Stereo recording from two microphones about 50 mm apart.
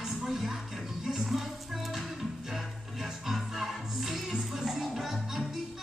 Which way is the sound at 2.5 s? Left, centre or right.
Centre.